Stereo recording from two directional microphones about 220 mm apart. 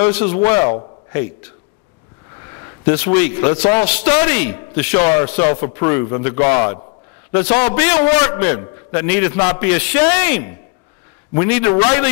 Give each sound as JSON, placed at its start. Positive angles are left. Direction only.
{"t": 0.0, "sound": "a man's voice", "side_deg": 15}
{"t": 2.8, "sound": "a man's voice", "side_deg": 15}